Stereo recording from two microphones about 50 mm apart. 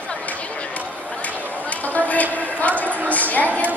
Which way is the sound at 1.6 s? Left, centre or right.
Left.